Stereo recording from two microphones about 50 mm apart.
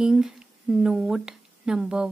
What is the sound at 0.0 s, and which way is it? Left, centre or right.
A woman's voice, centre.